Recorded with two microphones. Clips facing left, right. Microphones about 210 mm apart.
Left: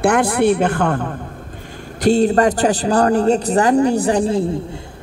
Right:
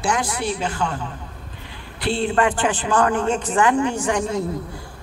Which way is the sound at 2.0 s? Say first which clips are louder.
Left 7 dB; 40° left (ahead or behind).